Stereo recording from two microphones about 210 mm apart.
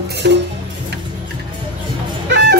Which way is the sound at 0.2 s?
50° right (ahead or behind).